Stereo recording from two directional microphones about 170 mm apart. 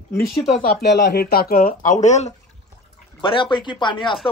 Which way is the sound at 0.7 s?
70° left (ahead or behind).